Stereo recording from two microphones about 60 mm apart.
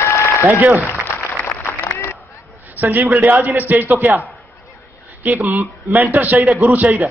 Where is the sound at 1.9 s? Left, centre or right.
Left.